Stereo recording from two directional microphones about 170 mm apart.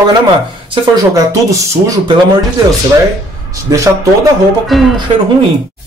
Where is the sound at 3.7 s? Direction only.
20° right (ahead or behind).